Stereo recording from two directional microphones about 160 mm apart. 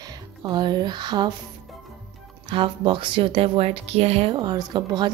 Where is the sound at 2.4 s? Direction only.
35° right (ahead or behind).